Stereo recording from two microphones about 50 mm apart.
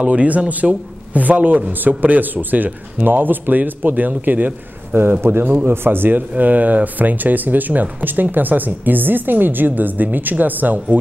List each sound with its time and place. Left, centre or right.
0.0 s speech: right
5.2 s a man's voice: right